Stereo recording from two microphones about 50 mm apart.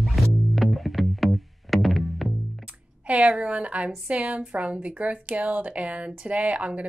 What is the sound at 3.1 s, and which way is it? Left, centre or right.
A woman's voice, right.